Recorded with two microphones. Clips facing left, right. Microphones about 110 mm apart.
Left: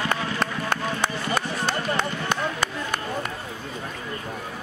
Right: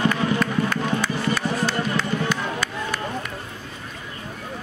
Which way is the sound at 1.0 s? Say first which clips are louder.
Right 2 dB; 55° left (ahead or behind).